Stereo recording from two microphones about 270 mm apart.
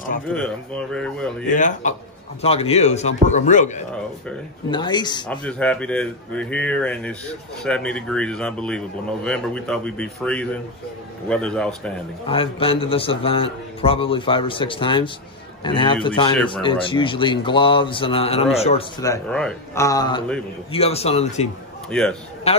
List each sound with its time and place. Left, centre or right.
0.3 s a man's voice: centre
1.5 s a man's voice: left
4.6 s speech: centre
5.3 s a man's voice: centre
12.3 s a man's voice: centre
21.9 s a man's voice: centre
22.5 s a man's voice: left